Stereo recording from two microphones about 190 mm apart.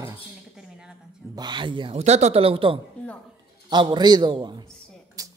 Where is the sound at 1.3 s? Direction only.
25° right (ahead or behind).